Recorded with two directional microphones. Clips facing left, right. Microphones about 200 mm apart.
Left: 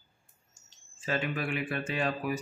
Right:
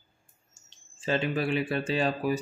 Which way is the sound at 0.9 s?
30° right (ahead or behind).